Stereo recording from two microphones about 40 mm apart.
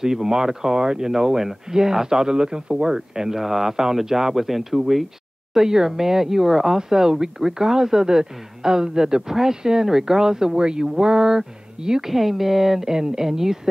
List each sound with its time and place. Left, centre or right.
0.0 s speech: centre